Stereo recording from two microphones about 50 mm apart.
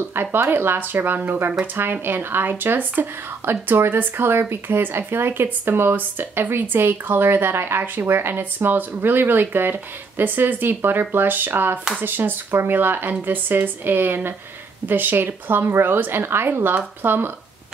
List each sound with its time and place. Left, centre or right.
0.1 s speech: right